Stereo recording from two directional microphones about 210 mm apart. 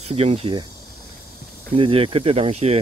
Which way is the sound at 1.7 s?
25° right (ahead or behind).